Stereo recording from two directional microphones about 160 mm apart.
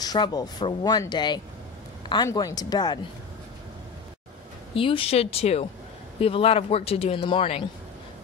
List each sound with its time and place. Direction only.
0.0 s speech: 25° left (ahead or behind)
4.7 s a man's voice: 35° left (ahead or behind)